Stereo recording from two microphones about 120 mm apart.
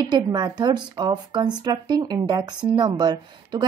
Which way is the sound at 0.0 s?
35° right (ahead or behind).